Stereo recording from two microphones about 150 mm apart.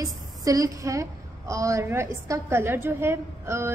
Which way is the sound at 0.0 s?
25° right (ahead or behind).